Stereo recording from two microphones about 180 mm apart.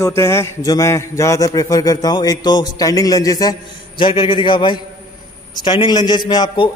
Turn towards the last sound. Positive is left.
turn(degrees=25)  # may be behind; listen again after turning